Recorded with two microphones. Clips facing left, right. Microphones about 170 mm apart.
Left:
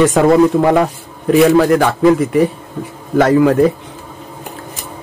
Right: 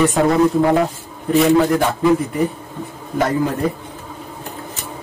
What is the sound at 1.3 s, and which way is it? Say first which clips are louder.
A man's voice: left 4 dB; 85° left.